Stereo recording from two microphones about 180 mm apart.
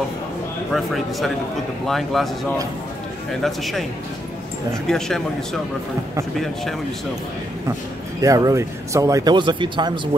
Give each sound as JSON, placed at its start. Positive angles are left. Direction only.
{"t": 0.7, "sound": "speech", "side_deg": 0}
{"t": 3.4, "sound": "speech", "side_deg": 0}
{"t": 4.8, "sound": "speech", "side_deg": 5}
{"t": 8.2, "sound": "speech", "side_deg": -20}